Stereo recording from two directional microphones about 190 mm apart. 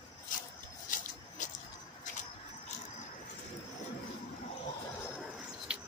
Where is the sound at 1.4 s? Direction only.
40° left (ahead or behind).